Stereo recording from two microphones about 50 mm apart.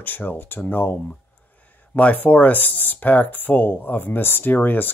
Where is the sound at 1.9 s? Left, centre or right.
Left.